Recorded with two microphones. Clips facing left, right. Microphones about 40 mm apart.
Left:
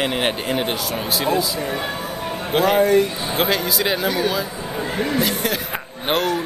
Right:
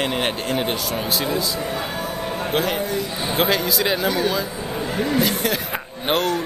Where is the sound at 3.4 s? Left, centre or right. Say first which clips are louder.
Even; centre.